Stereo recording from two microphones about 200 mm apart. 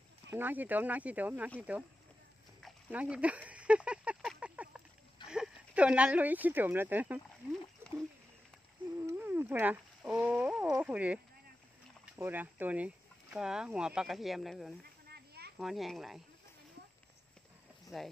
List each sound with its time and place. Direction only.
0.3 s speech: 10° right (ahead or behind)
2.6 s a sound: 5° right (ahead or behind)
5.3 s speech: 5° right (ahead or behind)
9.0 s speech: 10° right (ahead or behind)
12.2 s speech: 10° right (ahead or behind)
15.0 s a sound: 50° right (ahead or behind)
15.5 s speech: centre (ahead or behind)